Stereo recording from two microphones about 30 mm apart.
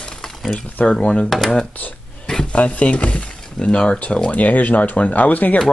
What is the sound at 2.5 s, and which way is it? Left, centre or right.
Speech, left.